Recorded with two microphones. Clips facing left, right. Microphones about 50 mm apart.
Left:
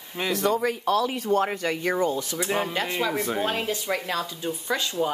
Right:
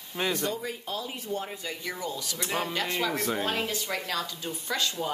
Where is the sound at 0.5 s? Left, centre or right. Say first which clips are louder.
Left 10 dB; left.